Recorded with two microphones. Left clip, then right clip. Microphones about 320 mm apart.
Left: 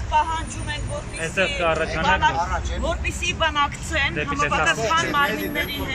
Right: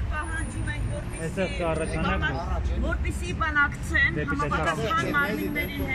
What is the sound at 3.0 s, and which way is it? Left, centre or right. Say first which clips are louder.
Speech: left 9 dB; centre.